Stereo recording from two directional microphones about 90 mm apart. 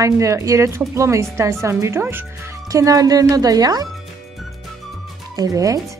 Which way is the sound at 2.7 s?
40° right (ahead or behind).